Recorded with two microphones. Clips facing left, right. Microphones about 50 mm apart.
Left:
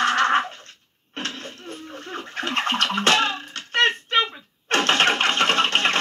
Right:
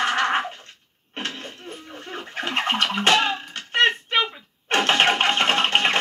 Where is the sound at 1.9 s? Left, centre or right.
Centre.